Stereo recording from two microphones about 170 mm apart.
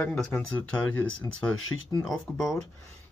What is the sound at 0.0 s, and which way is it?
Speech, 5° left (ahead or behind).